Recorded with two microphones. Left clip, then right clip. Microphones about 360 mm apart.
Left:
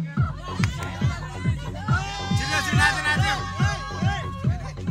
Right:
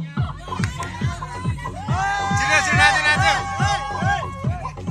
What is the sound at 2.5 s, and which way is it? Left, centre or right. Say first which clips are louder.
Music: right 6 dB; centre.